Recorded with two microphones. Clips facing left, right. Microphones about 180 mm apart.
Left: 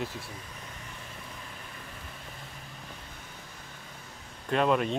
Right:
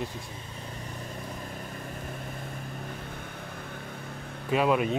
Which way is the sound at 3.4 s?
60° right (ahead or behind).